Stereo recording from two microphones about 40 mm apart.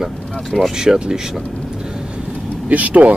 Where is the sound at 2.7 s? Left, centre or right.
Right.